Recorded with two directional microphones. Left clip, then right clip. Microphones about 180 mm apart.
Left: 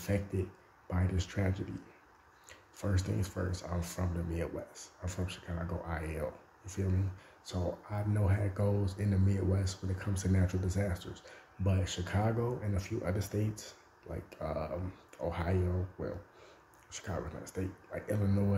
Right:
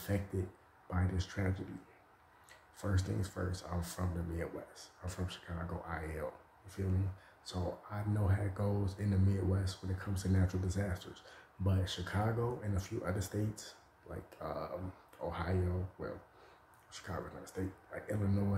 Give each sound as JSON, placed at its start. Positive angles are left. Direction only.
{"t": 0.1, "sound": "speech", "side_deg": 5}
{"t": 2.8, "sound": "speech", "side_deg": 5}
{"t": 7.4, "sound": "speech", "side_deg": 5}